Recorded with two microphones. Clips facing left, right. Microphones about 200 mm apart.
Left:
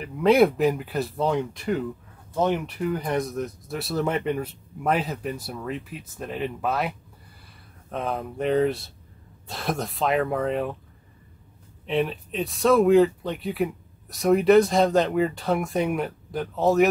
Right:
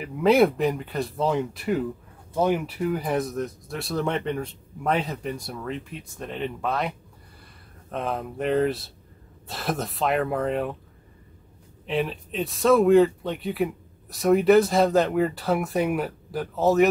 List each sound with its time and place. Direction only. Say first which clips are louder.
0.0 s speech: left 1 dB; centre (ahead or behind)
11.8 s speech: left 2 dB; centre (ahead or behind)